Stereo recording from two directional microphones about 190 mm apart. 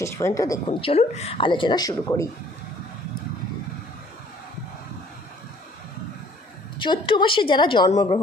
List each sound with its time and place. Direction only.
0.0 s speech: 15° left (ahead or behind)
0.7 s a woman's voice: 30° left (ahead or behind)
6.8 s a woman's voice: 25° left (ahead or behind)